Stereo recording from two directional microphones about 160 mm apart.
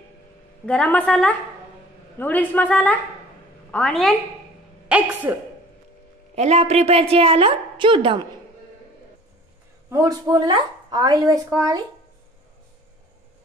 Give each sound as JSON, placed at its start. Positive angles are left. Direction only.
{"t": 0.7, "sound": "a woman's voice", "side_deg": 10}
{"t": 4.8, "sound": "speech", "side_deg": -10}
{"t": 6.3, "sound": "a woman's voice", "side_deg": -40}
{"t": 9.8, "sound": "a woman's voice", "side_deg": -20}